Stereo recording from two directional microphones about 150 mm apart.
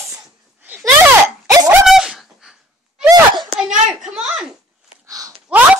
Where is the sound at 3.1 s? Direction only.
30° right (ahead or behind).